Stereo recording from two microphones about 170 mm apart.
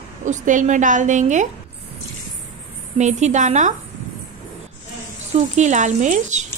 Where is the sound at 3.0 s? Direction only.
45° right (ahead or behind).